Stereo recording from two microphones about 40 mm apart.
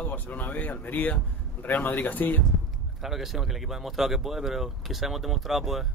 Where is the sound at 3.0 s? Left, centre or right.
Centre.